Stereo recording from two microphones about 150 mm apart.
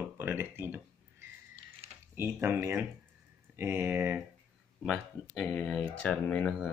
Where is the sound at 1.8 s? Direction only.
40° right (ahead or behind).